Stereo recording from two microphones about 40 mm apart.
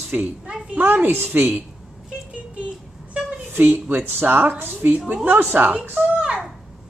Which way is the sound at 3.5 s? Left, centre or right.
Right.